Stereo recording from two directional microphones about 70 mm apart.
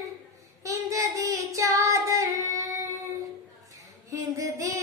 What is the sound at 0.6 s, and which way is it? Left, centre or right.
Child singing, right.